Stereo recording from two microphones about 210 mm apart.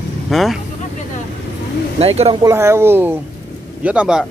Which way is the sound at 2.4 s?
15° right (ahead or behind).